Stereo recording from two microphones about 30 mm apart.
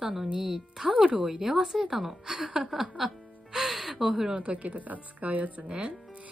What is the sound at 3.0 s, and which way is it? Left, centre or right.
Speech, centre.